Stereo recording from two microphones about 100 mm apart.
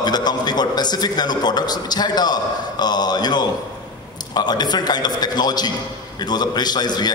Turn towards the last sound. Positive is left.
turn(degrees=45)  # may be behind; listen again after turning